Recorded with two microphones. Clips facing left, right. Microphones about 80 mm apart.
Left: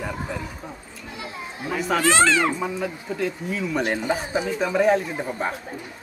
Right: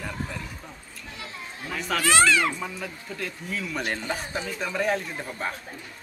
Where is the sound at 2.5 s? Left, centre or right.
Centre.